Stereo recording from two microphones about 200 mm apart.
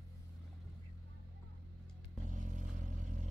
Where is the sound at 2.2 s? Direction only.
40° right (ahead or behind).